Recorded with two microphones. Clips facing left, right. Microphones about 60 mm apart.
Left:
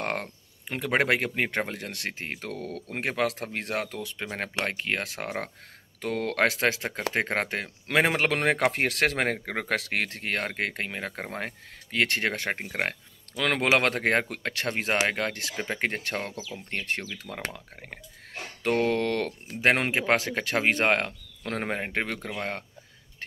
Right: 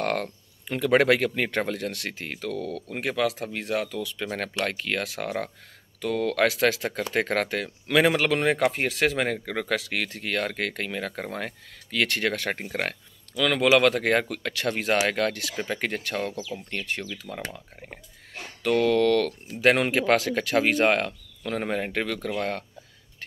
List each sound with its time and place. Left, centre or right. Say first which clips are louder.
0.0 s speech: right 4 dB; left
8.3 s speech: right 2 dB; left
10.5 s speech: right 1 dB; left
13.3 s speech: right 3 dB; left
17.2 s speech: right 1 dB; left
18.6 s speech: right 4 dB; left
21.7 s speech: right 2 dB; left